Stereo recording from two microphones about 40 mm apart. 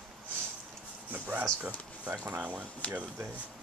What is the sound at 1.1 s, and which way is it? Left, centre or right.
Speech, right.